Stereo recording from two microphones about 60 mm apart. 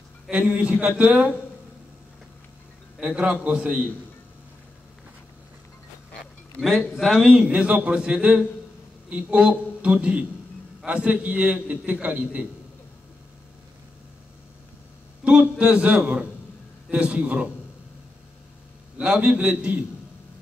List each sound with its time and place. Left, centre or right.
0.3 s a man's voice: centre
3.0 s a man's voice: centre
6.9 s a man's voice: centre
15.5 s a man's voice: centre
18.9 s a man's voice: centre